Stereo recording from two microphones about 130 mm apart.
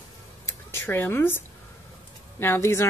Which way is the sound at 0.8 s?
15° left (ahead or behind).